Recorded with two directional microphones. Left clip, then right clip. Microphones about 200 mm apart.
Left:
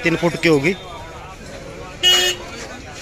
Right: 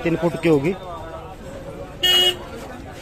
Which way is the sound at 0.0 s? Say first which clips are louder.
Left 3 dB; 5° right (ahead or behind).